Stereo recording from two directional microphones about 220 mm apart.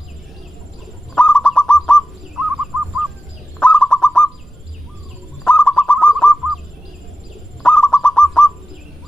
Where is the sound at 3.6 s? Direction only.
5° left (ahead or behind).